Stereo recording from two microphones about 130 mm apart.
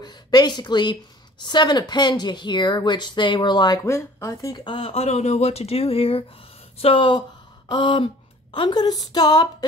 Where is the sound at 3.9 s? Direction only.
20° left (ahead or behind).